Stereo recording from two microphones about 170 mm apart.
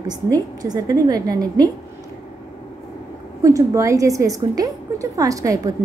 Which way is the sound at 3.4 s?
20° right (ahead or behind).